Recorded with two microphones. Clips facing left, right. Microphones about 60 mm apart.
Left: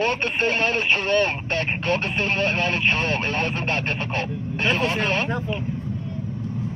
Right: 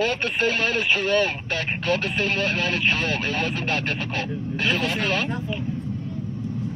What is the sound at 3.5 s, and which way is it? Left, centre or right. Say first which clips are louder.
Speech: left 1 dB; left.